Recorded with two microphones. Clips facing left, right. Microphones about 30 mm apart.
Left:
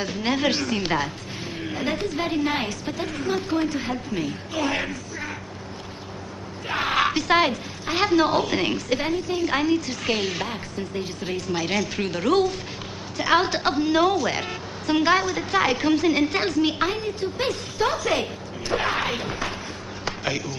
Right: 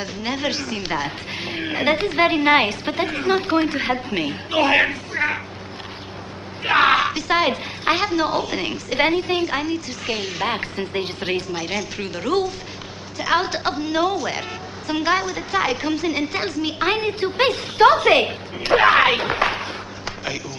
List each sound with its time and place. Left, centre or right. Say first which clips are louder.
0.0 s a woman's voice: left 1 dB; centre
1.3 s a woman's voice: right 5 dB; right
6.6 s a sound: right 10 dB; right
7.0 s a woman's voice: even; centre
9.0 s a woman's voice: right 6 dB; right
9.5 s a woman's voice: left 2 dB; centre
10.4 s a woman's voice: right 6 dB; right
11.4 s a woman's voice: left 1 dB; centre
16.8 s a woman's voice: right 4 dB; right
20.1 s a sound: left 2 dB; centre